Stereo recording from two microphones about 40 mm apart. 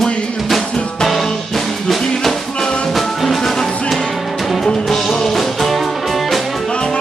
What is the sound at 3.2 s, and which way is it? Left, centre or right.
Music, centre.